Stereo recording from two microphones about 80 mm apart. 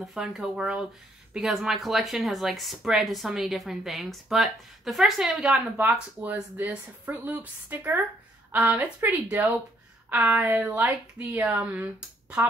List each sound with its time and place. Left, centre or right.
0.0 s speech: centre